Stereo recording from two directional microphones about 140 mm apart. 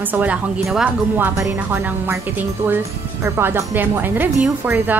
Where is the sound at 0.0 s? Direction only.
10° right (ahead or behind).